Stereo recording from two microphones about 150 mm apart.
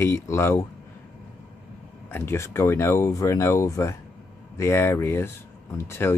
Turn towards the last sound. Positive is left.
turn(degrees=15)  # may be behind; listen again after turning